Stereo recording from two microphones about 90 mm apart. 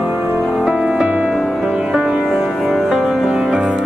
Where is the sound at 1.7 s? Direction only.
10° right (ahead or behind).